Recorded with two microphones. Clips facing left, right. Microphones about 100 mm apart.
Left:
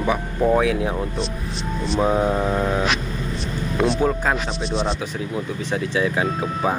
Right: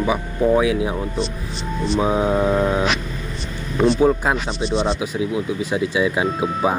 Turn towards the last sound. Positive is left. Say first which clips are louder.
# right 2 dB
turn(degrees=-10)  # may be behind; listen again after turning